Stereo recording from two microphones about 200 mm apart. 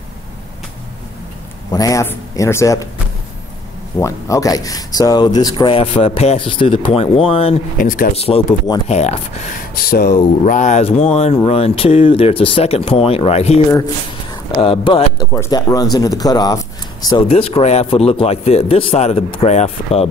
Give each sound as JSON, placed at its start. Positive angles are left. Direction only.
{"t": 1.7, "sound": "a man's voice", "side_deg": 15}
{"t": 4.0, "sound": "speech", "side_deg": 15}
{"t": 7.7, "sound": "speech", "side_deg": 45}
{"t": 8.1, "sound": "speech", "side_deg": 30}
{"t": 9.8, "sound": "speech", "side_deg": 50}
{"t": 14.6, "sound": "speech", "side_deg": 25}
{"t": 15.3, "sound": "speech", "side_deg": 15}